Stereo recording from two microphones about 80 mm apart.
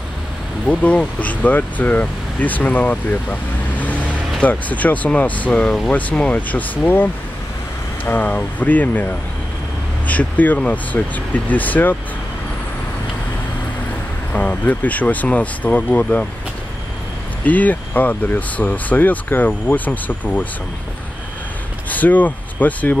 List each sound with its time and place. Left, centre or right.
0.7 s speech: centre
10.0 s speech: centre
14.3 s speech: centre
17.5 s speech: left
21.8 s speech: left